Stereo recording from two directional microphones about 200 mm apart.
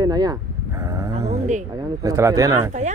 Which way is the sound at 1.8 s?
15° right (ahead or behind).